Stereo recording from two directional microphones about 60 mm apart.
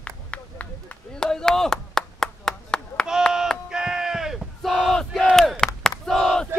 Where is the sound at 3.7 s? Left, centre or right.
Centre.